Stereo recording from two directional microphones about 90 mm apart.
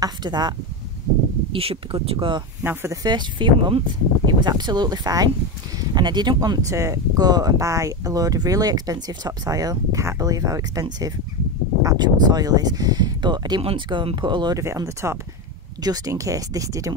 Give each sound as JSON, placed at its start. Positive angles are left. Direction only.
{"t": 0.0, "sound": "speech", "side_deg": -50}
{"t": 1.5, "sound": "speech", "side_deg": -85}
{"t": 2.6, "sound": "speech", "side_deg": -25}
{"t": 2.9, "sound": "speech", "side_deg": -50}
{"t": 6.7, "sound": "speech", "side_deg": -35}
{"t": 13.6, "sound": "speech", "side_deg": -80}
{"t": 14.5, "sound": "speech", "side_deg": -40}